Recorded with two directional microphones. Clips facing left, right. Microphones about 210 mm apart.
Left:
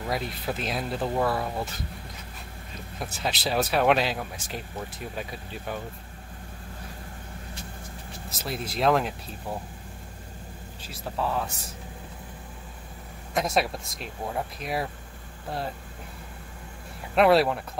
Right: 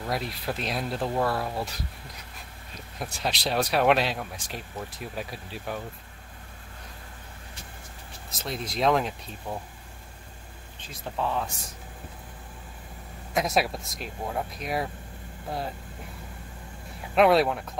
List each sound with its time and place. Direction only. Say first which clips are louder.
0.1 s speech: even; centre (ahead or behind)
3.0 s speech: even; 5° left (ahead or behind)
8.4 s speech: even; 5° left (ahead or behind)
10.9 s speech: even; 5° left (ahead or behind)
13.3 s speech: even; centre (ahead or behind)
17.1 s speech: even; centre (ahead or behind)